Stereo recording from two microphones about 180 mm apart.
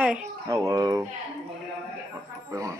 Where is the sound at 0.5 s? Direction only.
15° right (ahead or behind).